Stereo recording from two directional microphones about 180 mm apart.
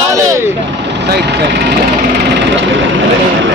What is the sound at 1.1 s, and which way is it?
Speech, 70° right (ahead or behind).